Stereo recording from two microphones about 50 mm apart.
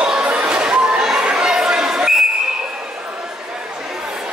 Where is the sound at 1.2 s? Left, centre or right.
Centre.